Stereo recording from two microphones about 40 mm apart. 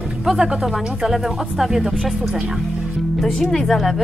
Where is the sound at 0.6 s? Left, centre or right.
Centre.